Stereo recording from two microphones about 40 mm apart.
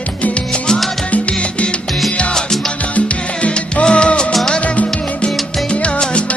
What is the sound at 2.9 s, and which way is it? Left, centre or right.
Salsa music, left.